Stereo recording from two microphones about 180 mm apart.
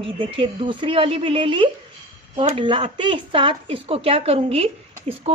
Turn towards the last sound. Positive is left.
turn(degrees=-35)  # may be behind; listen again after turning